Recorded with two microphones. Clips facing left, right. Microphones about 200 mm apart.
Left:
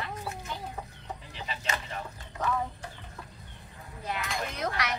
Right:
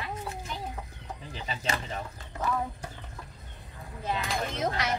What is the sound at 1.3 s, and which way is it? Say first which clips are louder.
Speech: right 3 dB; 35° right (ahead or behind).